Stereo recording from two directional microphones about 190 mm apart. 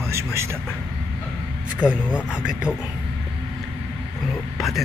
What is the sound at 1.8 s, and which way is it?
Speech, 10° right (ahead or behind).